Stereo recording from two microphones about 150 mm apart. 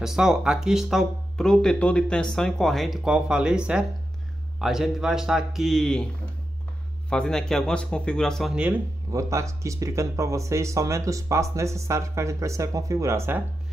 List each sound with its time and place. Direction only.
0.0 s speech: 5° right (ahead or behind)
7.1 s speech: 5° left (ahead or behind)
9.1 s speech: 20° right (ahead or behind)